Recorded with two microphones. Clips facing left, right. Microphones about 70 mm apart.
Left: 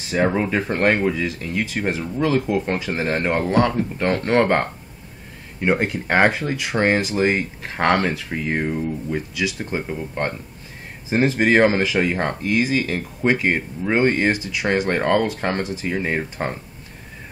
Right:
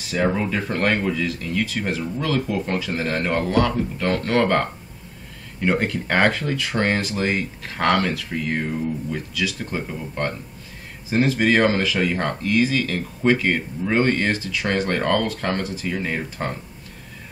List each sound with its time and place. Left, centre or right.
0.1 s speech: left